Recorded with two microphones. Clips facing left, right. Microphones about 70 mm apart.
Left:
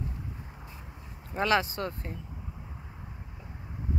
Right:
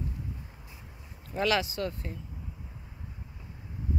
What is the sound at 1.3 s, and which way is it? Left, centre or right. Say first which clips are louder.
Speech: left 1 dB; left.